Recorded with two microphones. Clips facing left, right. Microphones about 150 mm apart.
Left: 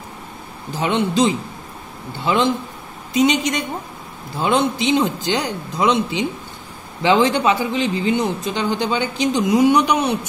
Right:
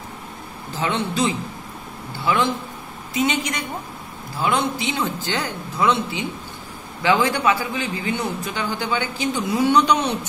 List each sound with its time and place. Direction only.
0.7 s a man's voice: 15° left (ahead or behind)